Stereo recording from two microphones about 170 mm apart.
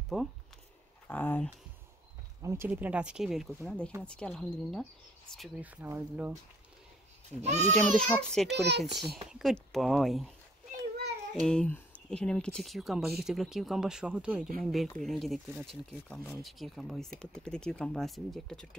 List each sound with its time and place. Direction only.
0.1 s speech: centre (ahead or behind)
2.4 s speech: 15° right (ahead or behind); by 4.8 s 5° left (ahead or behind)
5.6 s speech: 10° right (ahead or behind)
7.4 s speech: 40° right (ahead or behind)
7.7 s speech: 5° left (ahead or behind)
8.5 s a child's voice: 80° right
9.1 s speech: centre (ahead or behind)
11.4 s speech: 5° left (ahead or behind)